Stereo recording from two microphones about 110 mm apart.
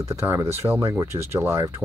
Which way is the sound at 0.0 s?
25° right (ahead or behind).